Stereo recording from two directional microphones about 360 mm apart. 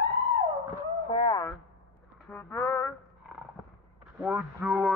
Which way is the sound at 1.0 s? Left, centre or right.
Centre.